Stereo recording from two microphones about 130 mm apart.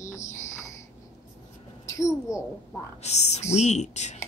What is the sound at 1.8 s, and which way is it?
Speech, 25° left (ahead or behind).